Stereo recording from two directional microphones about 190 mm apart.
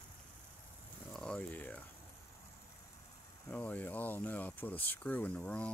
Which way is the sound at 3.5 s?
10° left (ahead or behind).